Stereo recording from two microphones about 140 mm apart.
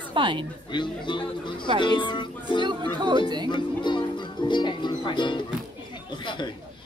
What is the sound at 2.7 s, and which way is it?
Music, 35° right (ahead or behind).